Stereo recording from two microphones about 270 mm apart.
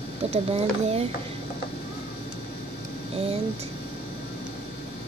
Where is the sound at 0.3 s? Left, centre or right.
Right.